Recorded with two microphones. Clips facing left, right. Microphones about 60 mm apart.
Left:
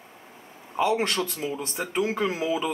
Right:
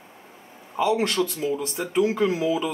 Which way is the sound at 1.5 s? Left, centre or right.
Centre.